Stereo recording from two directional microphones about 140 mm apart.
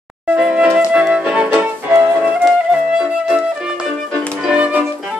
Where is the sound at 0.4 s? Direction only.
5° right (ahead or behind).